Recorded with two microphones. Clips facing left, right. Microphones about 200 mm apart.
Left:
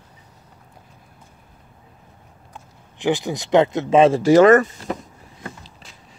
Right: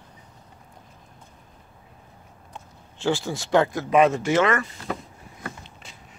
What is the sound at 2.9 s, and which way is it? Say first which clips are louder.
Speech: left 4 dB; 15° left (ahead or behind).